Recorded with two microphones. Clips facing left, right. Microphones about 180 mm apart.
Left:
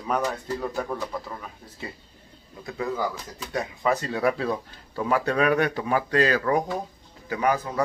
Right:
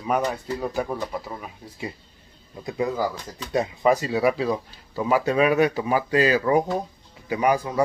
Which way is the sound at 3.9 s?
5° right (ahead or behind).